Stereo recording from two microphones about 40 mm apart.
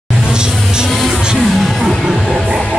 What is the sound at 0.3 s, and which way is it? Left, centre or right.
Music, centre.